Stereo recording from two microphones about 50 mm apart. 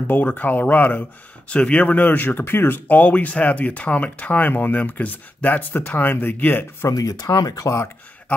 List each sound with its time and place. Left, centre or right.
0.1 s speech: left
1.5 s speech: left
2.9 s speech: left
6.8 s speech: left
7.6 s speech: left